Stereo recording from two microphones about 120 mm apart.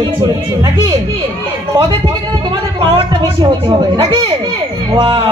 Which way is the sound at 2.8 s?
40° right (ahead or behind).